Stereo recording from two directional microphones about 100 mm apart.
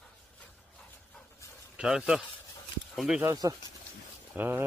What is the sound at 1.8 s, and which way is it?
Speech, 5° right (ahead or behind).